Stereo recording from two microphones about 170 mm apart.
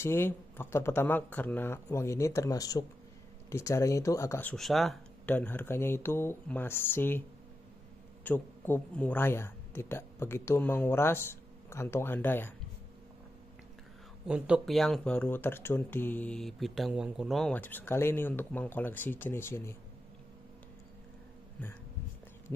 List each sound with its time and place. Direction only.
0.0 s speech: 15° left (ahead or behind)
5.3 s a man's voice: 10° left (ahead or behind)
14.2 s speech: 5° right (ahead or behind); by 19.7 s 15° left (ahead or behind)
21.6 s speech: 10° left (ahead or behind)